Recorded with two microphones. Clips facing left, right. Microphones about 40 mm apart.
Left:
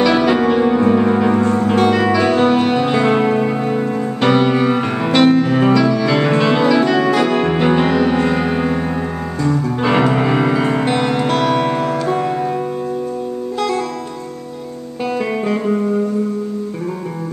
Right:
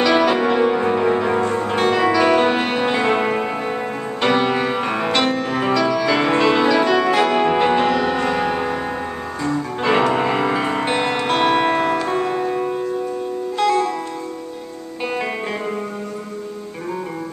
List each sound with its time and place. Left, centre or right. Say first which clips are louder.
0.0 s music: left 2 dB; centre
9.8 s music: left 1 dB; centre
12.1 s music: left 3 dB; centre
13.6 s music: right 2 dB; centre